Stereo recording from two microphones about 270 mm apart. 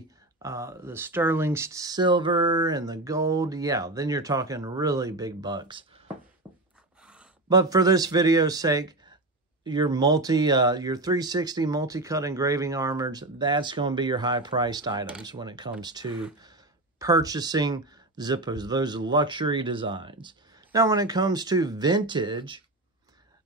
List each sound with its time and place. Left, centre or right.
0.4 s speech: centre
6.4 s a sound: centre
7.4 s speech: centre